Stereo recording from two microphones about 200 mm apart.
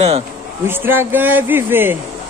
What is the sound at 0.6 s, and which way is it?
Speech, 10° right (ahead or behind).